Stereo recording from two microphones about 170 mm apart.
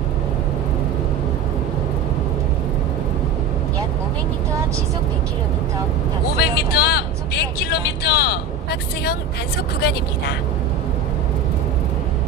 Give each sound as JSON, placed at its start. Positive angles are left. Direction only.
{"t": 6.3, "sound": "speech", "side_deg": 70}